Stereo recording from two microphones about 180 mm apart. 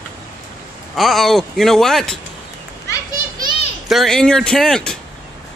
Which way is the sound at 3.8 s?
Centre (ahead or behind).